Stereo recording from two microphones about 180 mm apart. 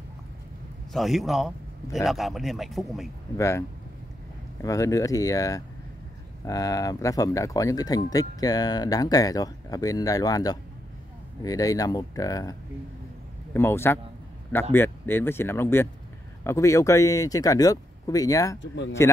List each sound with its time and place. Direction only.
0.9 s a man's voice: centre (ahead or behind)
3.3 s speech: 15° left (ahead or behind)